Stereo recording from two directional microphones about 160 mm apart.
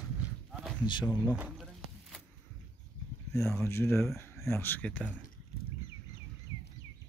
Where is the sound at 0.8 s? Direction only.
30° left (ahead or behind).